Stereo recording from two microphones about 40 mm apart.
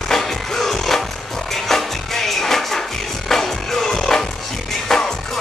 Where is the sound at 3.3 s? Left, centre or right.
Centre.